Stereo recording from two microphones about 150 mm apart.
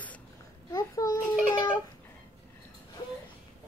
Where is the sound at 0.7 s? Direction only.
25° left (ahead or behind).